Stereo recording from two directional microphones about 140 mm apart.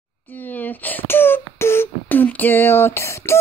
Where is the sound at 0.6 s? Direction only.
10° left (ahead or behind).